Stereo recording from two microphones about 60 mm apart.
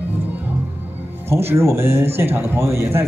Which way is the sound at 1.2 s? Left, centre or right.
Right.